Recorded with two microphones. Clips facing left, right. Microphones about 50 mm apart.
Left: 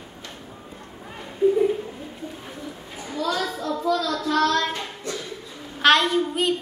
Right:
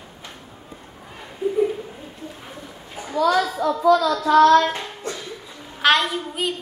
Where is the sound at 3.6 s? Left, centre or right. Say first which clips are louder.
Right 7 dB; right.